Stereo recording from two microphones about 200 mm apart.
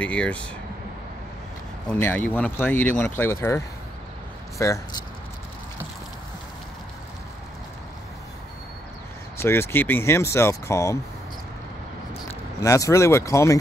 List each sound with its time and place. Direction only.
0.0 s speech: 5° left (ahead or behind)
1.9 s speech: 10° left (ahead or behind)
9.4 s speech: 10° left (ahead or behind)
12.6 s speech: 15° left (ahead or behind)